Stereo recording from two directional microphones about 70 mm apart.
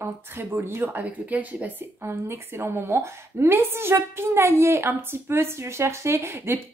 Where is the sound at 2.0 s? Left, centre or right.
Right.